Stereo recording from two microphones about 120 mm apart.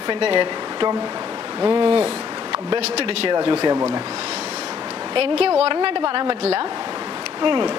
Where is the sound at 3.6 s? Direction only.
30° right (ahead or behind).